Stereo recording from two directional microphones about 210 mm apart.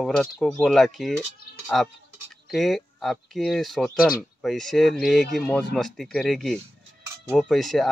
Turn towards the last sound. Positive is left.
turn(degrees=0)  # may be behind; listen again after turning